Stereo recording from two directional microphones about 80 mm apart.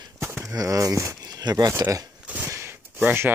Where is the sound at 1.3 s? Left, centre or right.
Right.